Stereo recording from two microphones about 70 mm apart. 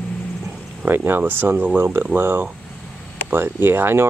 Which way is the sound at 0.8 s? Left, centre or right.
Right.